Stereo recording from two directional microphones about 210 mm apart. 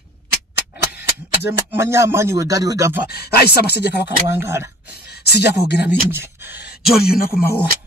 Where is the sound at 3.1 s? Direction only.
50° left (ahead or behind).